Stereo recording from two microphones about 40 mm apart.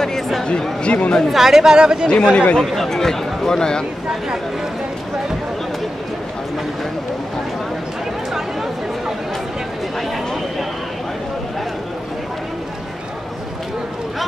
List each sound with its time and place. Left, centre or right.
0.5 s speech: left
1.3 s speech: centre
2.0 s speech: left
2.6 s speech: centre